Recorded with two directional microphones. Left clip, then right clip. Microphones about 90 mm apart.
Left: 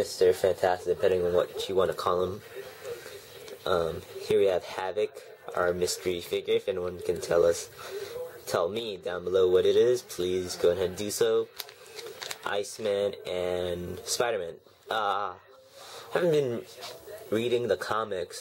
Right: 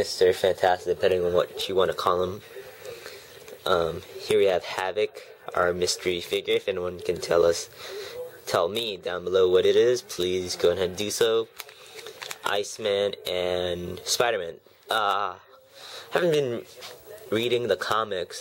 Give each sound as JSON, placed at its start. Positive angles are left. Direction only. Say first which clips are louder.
{"t": 0.0, "sound": "speech", "louder": "right 2 dB", "side_deg": -15}
{"t": 3.6, "sound": "speech", "louder": "right 4 dB", "side_deg": -15}
{"t": 11.5, "sound": "a sound", "louder": "even", "side_deg": 0}
{"t": 12.4, "sound": "speech", "louder": "right 4 dB", "side_deg": -15}